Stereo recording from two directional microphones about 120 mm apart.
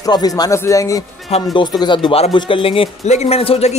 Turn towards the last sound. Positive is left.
turn(degrees=55)  # may be behind; listen again after turning